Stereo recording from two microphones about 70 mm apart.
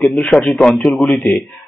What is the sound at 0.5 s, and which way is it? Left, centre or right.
Speech, centre.